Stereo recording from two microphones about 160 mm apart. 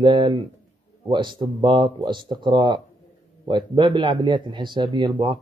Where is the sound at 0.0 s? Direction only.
30° right (ahead or behind).